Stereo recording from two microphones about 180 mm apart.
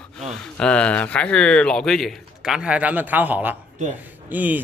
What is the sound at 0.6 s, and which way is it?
Speech, 5° left (ahead or behind).